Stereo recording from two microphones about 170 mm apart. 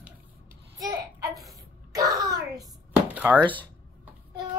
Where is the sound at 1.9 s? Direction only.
20° right (ahead or behind).